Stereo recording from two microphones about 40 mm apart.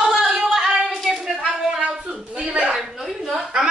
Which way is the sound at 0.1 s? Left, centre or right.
Centre.